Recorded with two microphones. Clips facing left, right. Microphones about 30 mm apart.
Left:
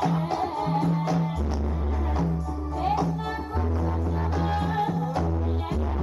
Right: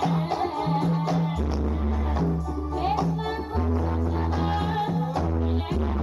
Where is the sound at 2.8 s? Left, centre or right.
Centre.